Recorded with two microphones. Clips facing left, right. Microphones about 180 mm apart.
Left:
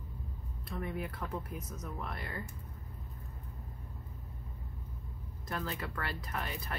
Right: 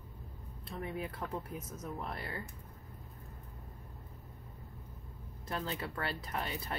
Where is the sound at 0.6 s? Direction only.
25° right (ahead or behind).